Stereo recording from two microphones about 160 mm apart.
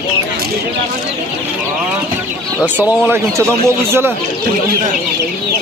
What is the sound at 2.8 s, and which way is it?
Speech, 10° right (ahead or behind).